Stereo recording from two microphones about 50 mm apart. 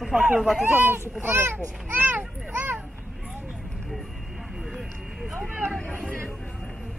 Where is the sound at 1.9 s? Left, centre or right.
Right.